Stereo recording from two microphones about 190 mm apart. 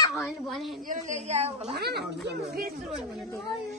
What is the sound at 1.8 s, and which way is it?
Speech, 60° right (ahead or behind).